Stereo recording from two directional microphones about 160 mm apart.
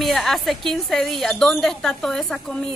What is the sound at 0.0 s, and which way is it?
Speech, centre (ahead or behind).